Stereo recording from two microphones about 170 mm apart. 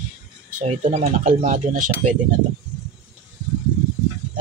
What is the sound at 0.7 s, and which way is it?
Speech, 40° right (ahead or behind).